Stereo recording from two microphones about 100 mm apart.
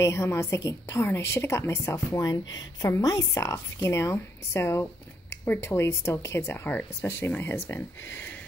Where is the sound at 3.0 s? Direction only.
40° left (ahead or behind); by 7.8 s 20° left (ahead or behind).